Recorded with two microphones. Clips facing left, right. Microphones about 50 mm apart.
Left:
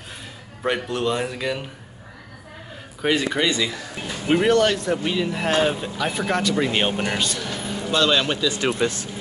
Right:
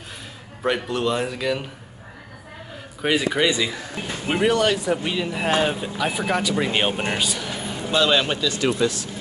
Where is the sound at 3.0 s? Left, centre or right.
Centre.